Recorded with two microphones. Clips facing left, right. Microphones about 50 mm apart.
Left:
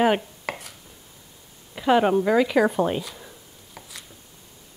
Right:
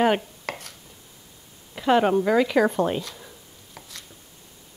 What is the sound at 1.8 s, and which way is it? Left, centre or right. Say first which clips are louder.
Speech: even; centre.